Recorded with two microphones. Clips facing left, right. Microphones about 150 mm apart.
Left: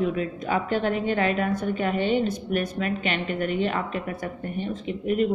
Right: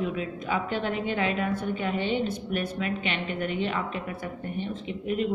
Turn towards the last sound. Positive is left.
turn(degrees=50)  # may be behind; listen again after turning